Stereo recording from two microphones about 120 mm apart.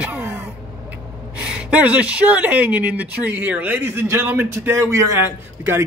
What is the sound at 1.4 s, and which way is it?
Speech, 10° right (ahead or behind).